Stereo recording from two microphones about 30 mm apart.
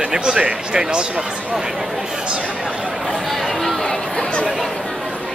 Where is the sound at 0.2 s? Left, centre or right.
Right.